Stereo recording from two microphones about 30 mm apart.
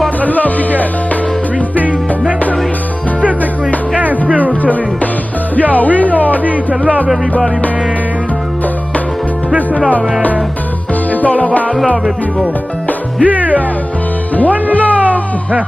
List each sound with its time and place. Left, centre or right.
0.2 s music: left
5.8 s music: left
6.2 s a sound: left
11.1 s music: left
13.2 s music: right
14.7 s music: left